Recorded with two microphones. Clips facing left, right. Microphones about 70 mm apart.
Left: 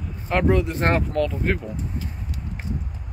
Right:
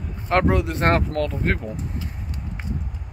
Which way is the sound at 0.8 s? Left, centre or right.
Right.